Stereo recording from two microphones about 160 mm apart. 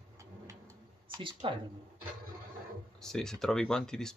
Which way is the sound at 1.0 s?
30° right (ahead or behind).